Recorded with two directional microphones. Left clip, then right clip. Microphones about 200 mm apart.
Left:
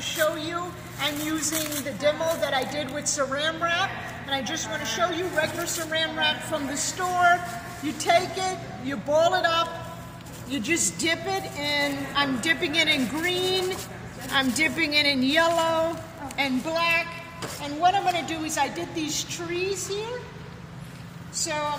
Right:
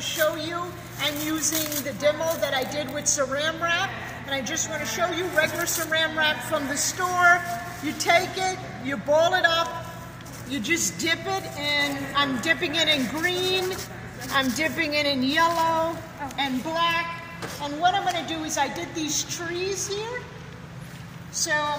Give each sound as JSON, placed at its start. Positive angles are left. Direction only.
{"t": 0.0, "sound": "a woman's voice", "side_deg": 0}
{"t": 17.8, "sound": "a woman's voice", "side_deg": 5}
{"t": 21.5, "sound": "a woman's voice", "side_deg": -5}